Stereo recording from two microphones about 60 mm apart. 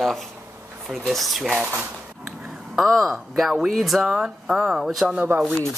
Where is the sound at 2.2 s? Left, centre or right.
Centre.